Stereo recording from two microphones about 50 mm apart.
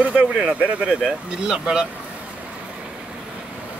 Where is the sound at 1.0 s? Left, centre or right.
Centre.